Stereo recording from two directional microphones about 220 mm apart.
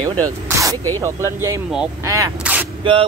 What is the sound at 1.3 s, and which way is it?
Speech, 15° right (ahead or behind).